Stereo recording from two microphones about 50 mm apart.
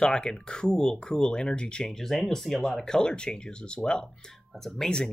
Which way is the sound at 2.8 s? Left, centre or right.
Centre.